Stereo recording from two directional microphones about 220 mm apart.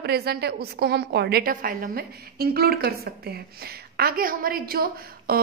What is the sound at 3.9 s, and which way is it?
A woman's voice, 45° right (ahead or behind).